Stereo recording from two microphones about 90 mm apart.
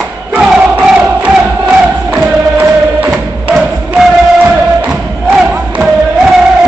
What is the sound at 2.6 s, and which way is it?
Music, 20° right (ahead or behind).